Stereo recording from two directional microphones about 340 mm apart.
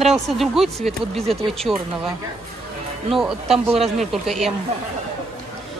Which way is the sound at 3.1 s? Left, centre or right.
Centre.